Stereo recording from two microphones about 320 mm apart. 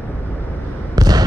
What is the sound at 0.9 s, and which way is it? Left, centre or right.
Fireworks, centre.